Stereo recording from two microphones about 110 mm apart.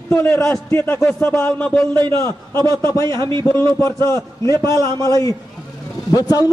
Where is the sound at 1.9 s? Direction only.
40° right (ahead or behind).